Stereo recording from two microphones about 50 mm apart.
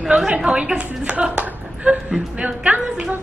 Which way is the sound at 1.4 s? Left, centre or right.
Right.